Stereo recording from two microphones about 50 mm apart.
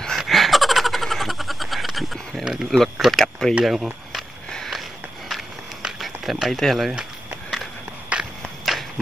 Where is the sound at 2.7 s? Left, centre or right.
Centre.